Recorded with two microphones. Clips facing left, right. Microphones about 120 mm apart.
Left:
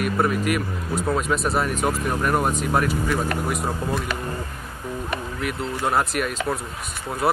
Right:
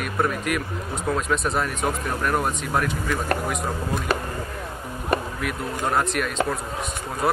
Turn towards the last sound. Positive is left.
turn(degrees=5)  # may be behind; listen again after turning